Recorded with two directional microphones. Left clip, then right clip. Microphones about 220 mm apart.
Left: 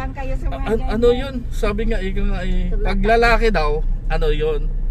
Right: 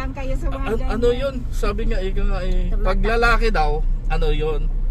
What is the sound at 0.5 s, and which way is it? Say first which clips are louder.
Speech: left 4 dB; 10° left (ahead or behind).